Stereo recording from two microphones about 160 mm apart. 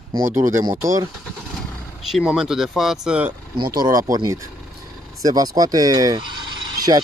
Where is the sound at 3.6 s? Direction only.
25° right (ahead or behind).